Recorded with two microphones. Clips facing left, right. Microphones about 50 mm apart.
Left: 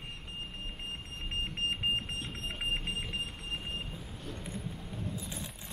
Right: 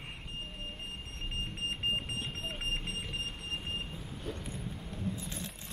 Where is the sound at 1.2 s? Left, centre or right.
Centre.